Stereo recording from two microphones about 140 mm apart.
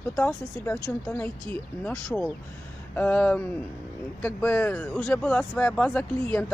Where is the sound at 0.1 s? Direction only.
15° left (ahead or behind).